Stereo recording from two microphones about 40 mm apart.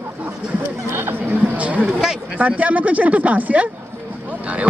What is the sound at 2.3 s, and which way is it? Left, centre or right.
Speech, right.